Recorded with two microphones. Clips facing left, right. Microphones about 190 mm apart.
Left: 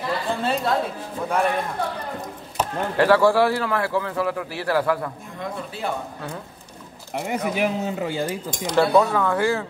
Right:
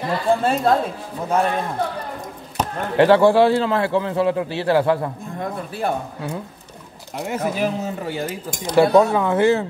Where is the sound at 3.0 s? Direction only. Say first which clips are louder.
Right 4 dB; 25° right (ahead or behind).